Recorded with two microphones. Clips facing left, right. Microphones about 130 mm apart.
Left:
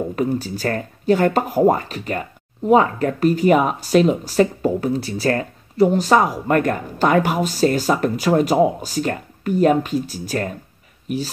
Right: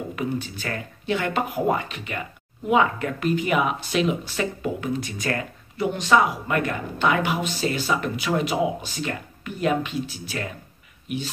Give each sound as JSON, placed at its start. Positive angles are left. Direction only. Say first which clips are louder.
{"t": 0.1, "sound": "speech", "louder": "left 6 dB", "side_deg": 40}